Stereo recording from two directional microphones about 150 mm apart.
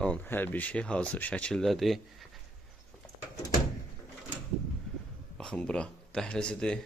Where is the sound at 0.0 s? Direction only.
10° left (ahead or behind).